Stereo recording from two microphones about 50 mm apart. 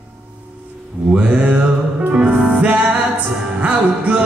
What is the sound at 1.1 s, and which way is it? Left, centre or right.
Mantra, right.